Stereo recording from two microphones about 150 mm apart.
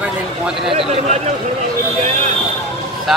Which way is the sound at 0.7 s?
40° right (ahead or behind).